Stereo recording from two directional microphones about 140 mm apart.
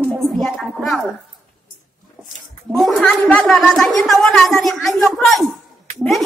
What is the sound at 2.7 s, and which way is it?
A woman's voice, centre (ahead or behind).